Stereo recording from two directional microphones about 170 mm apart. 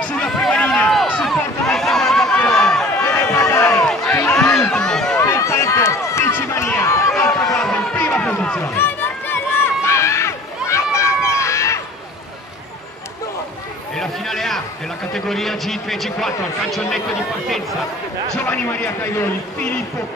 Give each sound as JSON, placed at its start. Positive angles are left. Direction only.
{"t": 0.0, "sound": "a sound", "side_deg": 5}
{"t": 3.0, "sound": "run", "side_deg": 15}
{"t": 3.8, "sound": "run", "side_deg": 5}
{"t": 5.2, "sound": "run", "side_deg": 15}
{"t": 7.4, "sound": "run", "side_deg": 5}
{"t": 13.9, "sound": "a sound", "side_deg": 0}
{"t": 15.1, "sound": "a man's voice", "side_deg": 0}
{"t": 18.3, "sound": "a man's voice", "side_deg": 10}